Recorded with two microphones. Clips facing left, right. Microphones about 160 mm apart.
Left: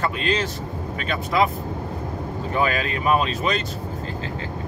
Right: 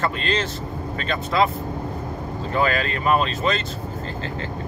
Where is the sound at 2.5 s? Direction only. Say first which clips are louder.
Right 1 dB; 15° left (ahead or behind).